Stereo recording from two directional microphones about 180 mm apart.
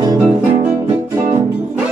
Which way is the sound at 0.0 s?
20° right (ahead or behind).